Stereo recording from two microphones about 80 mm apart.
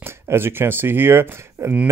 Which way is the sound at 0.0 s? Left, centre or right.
Right.